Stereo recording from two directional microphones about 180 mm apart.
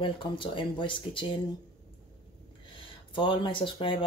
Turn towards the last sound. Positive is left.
turn(degrees=30)  # may be behind; listen again after turning